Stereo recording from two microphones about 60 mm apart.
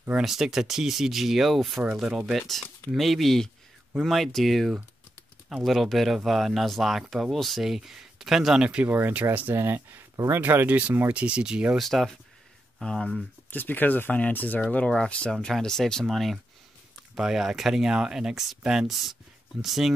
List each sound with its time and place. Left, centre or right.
0.2 s speech: centre
2.0 s speech: centre
2.3 s speech: centre
8.8 s speech: right
9.6 s speech: right
11.2 s speech: centre
11.8 s speech: centre
13.5 s speech: left
14.9 s speech: centre
15.3 s speech: centre